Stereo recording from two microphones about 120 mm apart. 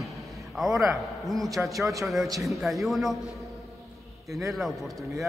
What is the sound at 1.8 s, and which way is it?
Speech, 25° right (ahead or behind).